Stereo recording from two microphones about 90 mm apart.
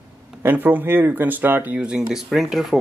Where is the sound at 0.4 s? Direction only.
20° right (ahead or behind).